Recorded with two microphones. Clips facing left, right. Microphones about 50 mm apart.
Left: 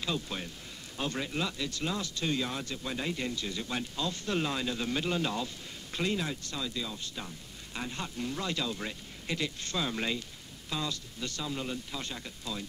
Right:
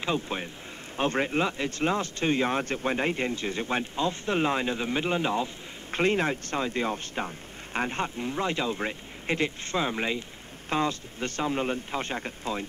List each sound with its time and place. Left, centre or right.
0.0 s speech: right
5.9 s speech: right
10.7 s speech: right